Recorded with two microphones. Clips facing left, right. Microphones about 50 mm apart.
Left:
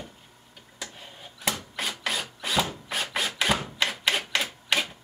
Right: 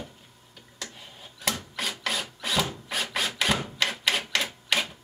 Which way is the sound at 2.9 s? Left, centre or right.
Centre.